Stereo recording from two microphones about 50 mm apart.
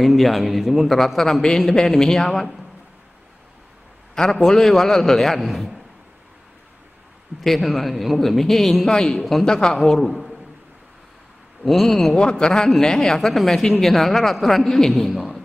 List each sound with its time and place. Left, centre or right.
0.0 s a man's voice: centre
4.1 s a man's voice: centre
7.4 s a man's voice: centre
11.6 s speech: centre
12.2 s a man's voice: centre